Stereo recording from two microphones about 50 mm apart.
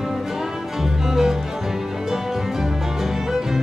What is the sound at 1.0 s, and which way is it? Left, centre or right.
Music, centre.